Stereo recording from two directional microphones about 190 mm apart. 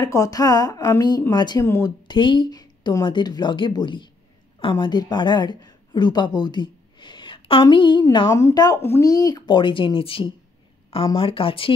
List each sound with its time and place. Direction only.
0.0 s a woman's voice: 20° left (ahead or behind)